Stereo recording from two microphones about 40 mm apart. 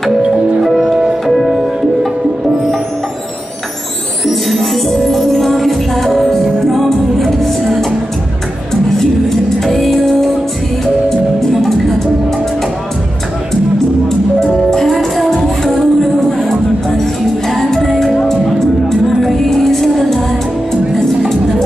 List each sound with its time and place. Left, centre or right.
0.7 s music: centre
0.9 s music: centre
4.3 s music: centre
8.9 s music: centre
14.4 s music: centre
19.5 s music: centre